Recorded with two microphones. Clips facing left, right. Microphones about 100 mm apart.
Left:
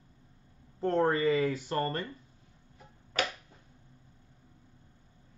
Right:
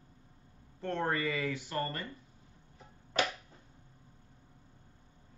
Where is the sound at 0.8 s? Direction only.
35° left (ahead or behind).